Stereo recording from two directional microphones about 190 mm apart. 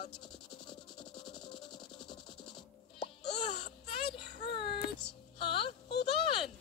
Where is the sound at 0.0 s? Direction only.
25° left (ahead or behind).